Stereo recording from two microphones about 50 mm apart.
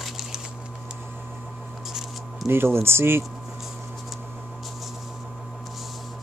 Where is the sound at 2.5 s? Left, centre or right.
Right.